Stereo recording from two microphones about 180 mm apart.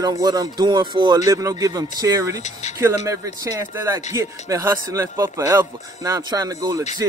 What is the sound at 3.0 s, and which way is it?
Speech, 15° right (ahead or behind).